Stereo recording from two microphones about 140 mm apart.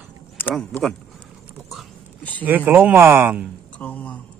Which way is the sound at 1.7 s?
5° left (ahead or behind).